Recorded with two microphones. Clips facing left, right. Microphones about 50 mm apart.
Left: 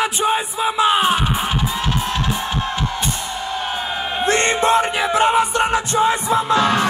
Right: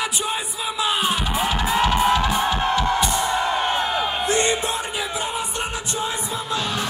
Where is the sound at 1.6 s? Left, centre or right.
Right.